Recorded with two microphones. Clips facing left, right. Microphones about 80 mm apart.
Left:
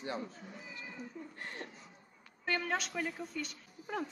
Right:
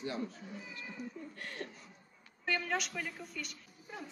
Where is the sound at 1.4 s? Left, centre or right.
Left.